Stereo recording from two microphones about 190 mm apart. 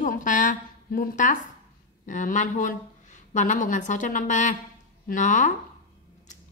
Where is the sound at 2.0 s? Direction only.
40° left (ahead or behind).